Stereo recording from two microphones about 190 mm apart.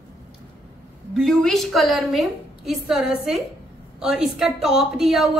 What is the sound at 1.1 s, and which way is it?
A woman's voice, centre (ahead or behind).